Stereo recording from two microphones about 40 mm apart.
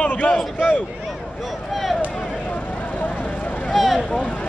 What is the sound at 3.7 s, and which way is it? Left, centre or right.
Vehicle, centre.